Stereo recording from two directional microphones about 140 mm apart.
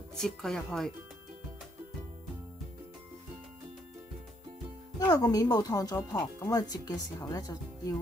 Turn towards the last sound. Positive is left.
turn(degrees=25)  # may be behind; listen again after turning